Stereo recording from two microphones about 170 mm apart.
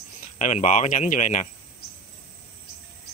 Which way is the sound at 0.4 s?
45° left (ahead or behind).